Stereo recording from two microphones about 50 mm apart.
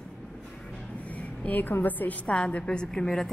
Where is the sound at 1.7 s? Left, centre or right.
Left.